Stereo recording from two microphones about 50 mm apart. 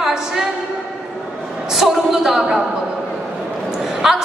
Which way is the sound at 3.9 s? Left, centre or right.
Centre.